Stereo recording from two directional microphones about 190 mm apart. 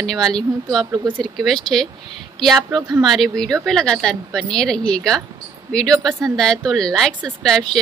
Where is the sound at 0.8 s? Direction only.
20° right (ahead or behind).